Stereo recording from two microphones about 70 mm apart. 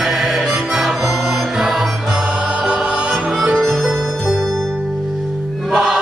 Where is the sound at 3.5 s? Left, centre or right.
Centre.